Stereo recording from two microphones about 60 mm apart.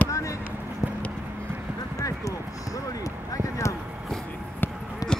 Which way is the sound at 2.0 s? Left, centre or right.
Left.